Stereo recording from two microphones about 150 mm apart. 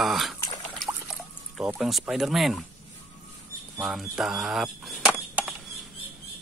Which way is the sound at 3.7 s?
5° right (ahead or behind).